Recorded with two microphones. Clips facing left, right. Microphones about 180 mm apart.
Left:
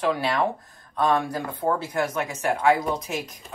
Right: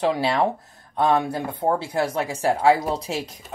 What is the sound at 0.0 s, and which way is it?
Speech, 30° right (ahead or behind).